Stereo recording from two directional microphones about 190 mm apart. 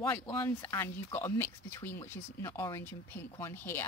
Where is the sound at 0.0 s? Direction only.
10° left (ahead or behind).